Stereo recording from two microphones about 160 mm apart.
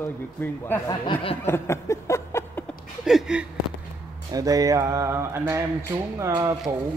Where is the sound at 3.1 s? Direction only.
5° right (ahead or behind).